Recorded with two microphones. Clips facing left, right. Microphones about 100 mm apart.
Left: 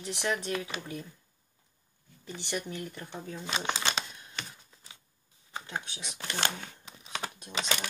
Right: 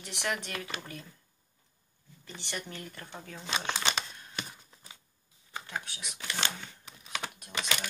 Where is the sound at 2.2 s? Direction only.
15° left (ahead or behind).